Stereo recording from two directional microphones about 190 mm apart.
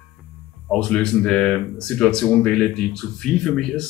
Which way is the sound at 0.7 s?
5° left (ahead or behind).